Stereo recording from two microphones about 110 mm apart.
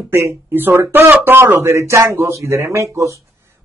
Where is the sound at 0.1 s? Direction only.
25° right (ahead or behind).